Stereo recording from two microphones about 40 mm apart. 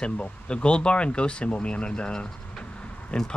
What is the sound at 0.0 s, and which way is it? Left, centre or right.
Speech, left.